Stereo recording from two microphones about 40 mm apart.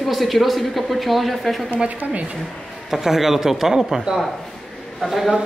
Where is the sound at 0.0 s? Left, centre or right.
Centre.